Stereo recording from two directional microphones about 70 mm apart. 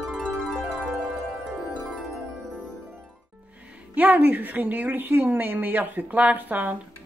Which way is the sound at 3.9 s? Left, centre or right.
Right.